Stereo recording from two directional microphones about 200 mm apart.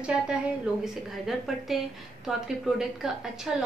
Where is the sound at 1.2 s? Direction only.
Centre (ahead or behind).